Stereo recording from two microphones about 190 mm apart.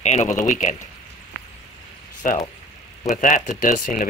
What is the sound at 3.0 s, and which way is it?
Speech, 40° left (ahead or behind).